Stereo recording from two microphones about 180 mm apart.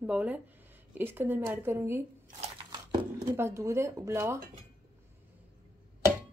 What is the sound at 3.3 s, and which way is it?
A woman's voice, 15° right (ahead or behind).